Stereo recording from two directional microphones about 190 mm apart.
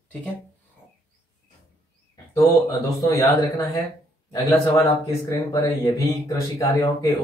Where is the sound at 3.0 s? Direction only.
15° left (ahead or behind).